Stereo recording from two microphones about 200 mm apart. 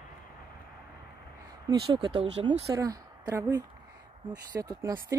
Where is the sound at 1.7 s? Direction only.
20° right (ahead or behind).